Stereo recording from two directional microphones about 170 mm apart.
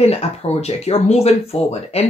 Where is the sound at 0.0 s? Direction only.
40° left (ahead or behind).